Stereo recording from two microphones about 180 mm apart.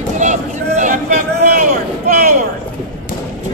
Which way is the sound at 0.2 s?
45° right (ahead or behind).